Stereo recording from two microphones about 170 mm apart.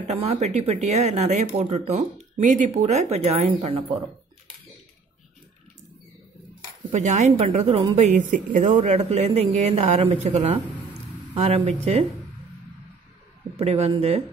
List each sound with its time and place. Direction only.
0.0 s speech: 40° right (ahead or behind)
6.9 s speech: 45° right (ahead or behind)
13.6 s speech: 40° right (ahead or behind)